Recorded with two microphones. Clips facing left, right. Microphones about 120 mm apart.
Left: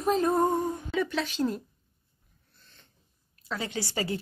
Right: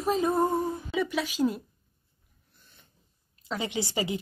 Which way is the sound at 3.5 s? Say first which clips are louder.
Right 2 dB; 20° right (ahead or behind).